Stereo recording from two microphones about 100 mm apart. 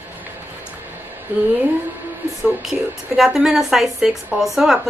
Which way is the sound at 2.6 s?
5° right (ahead or behind).